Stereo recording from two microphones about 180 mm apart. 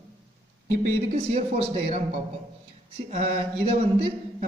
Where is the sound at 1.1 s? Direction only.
35° right (ahead or behind).